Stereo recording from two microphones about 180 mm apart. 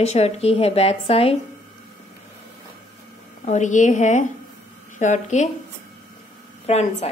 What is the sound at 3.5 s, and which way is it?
A woman's voice, 40° left (ahead or behind).